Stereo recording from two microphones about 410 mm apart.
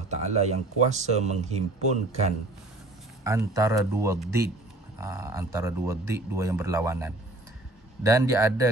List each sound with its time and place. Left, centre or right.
0.1 s speech: centre
3.3 s speech: centre